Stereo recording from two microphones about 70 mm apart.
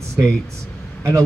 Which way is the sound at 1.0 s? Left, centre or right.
Right.